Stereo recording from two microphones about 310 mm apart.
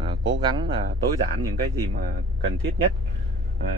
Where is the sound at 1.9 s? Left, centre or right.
Right.